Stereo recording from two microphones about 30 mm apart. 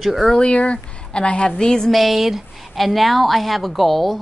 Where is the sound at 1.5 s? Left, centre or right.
Left.